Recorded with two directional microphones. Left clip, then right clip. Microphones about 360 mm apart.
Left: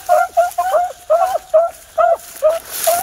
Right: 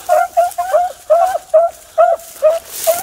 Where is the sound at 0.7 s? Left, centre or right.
Centre.